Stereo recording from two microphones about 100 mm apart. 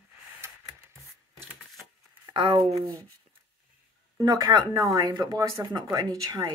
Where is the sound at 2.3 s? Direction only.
50° right (ahead or behind).